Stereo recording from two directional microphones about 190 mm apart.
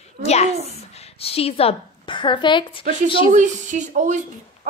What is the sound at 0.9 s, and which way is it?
A woman's voice, 30° left (ahead or behind).